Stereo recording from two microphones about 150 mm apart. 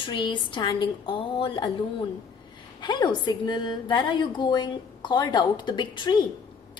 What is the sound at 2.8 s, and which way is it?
A woman's voice, 30° left (ahead or behind).